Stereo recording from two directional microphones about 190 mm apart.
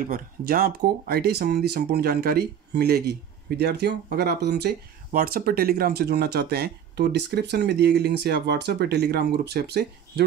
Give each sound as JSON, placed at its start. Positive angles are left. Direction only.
{"t": 0.0, "sound": "speech", "side_deg": -50}